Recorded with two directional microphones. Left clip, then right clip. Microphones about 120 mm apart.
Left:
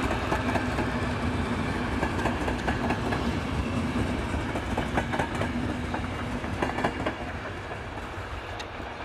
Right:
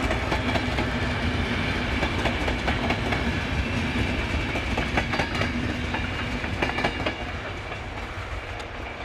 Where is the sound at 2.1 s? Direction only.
45° right (ahead or behind).